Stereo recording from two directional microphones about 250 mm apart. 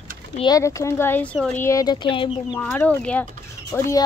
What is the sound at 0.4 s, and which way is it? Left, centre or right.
Speech, centre.